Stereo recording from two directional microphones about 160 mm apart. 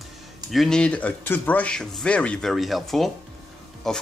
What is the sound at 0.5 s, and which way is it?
Speech, 5° left (ahead or behind).